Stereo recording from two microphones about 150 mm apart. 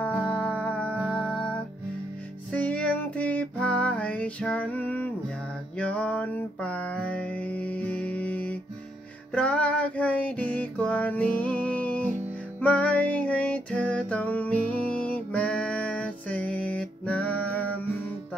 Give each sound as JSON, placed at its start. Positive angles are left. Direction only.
{"t": 0.0, "sound": "music", "side_deg": 10}
{"t": 5.8, "sound": "a sound", "side_deg": 10}
{"t": 9.3, "sound": "music", "side_deg": 10}